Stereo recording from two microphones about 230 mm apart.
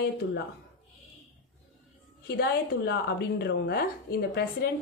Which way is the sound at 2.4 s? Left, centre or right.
Left.